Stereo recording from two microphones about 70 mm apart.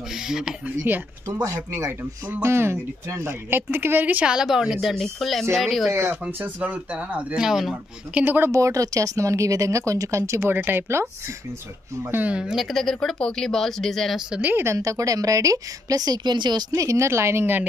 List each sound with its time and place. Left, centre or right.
0.1 s speech: centre
0.7 s speech: right
1.2 s speech: right
2.2 s speech: right
4.3 s speech: centre
6.0 s speech: right
7.4 s speech: centre
8.1 s speech: right
8.5 s speech: right
12.3 s speech: centre
12.6 s speech: centre
14.8 s a woman's voice: right
16.7 s speech: right